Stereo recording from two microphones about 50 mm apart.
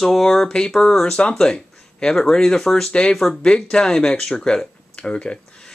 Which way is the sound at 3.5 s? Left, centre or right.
Centre.